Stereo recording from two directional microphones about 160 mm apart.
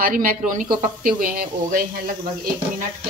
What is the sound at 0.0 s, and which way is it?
Speech, 60° right (ahead or behind).